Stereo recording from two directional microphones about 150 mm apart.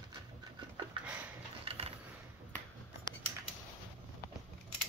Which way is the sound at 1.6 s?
40° right (ahead or behind).